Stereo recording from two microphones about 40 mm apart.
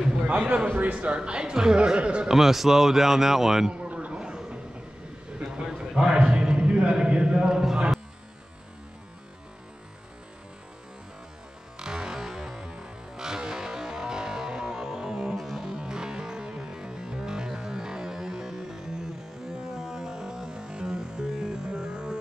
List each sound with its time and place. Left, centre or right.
0.7 s a man's voice: right
0.9 s speech: right
2.0 s speech: right
2.2 s speech: centre
3.8 s a sound: right
5.6 s a sound: centre
11.8 s music: centre
15.3 s music: centre
15.6 s music: centre
19.8 s music: centre